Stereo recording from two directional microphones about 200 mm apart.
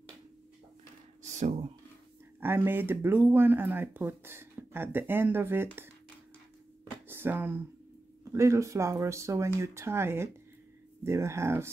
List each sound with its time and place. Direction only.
1.2 s a sound: 35° right (ahead or behind)
2.4 s speech: 10° right (ahead or behind)
7.1 s speech: 10° right (ahead or behind)